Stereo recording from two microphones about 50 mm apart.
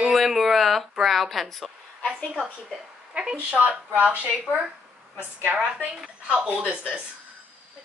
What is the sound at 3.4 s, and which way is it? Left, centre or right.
Speech, right.